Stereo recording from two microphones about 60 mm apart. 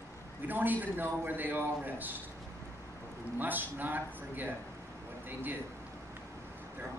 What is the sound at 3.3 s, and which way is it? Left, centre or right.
Speech, right.